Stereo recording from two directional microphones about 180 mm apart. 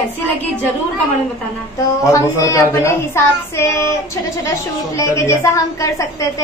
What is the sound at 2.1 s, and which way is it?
A woman's voice, 20° left (ahead or behind).